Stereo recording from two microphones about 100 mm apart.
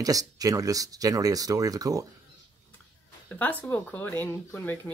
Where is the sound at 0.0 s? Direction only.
35° right (ahead or behind).